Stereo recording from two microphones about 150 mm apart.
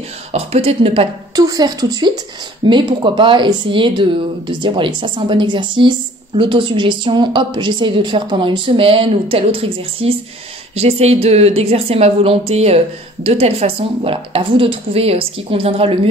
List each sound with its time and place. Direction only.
0.3 s speech: 45° right (ahead or behind)
1.3 s speech: 25° right (ahead or behind); by 15.9 s 40° right (ahead or behind)